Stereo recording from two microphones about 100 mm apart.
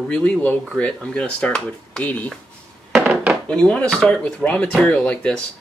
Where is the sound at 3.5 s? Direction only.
10° left (ahead or behind).